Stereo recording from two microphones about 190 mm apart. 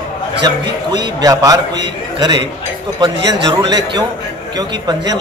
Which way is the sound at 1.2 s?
20° right (ahead or behind).